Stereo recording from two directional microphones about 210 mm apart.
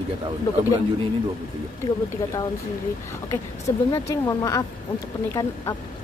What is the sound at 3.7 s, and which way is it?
Speech, 15° left (ahead or behind).